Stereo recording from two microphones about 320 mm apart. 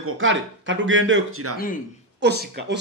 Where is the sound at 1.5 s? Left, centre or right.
Left.